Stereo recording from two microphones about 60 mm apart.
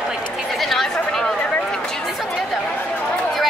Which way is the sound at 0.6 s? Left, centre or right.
Centre.